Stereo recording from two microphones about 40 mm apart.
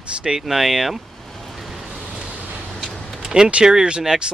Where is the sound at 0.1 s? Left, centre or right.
Right.